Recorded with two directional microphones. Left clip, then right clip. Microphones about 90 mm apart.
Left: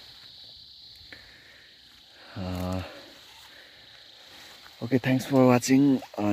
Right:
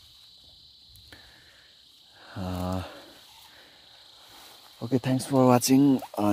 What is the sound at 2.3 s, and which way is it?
Speech, 20° right (ahead or behind).